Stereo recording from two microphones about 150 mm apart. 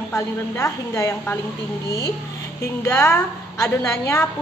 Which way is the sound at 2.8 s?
15° left (ahead or behind).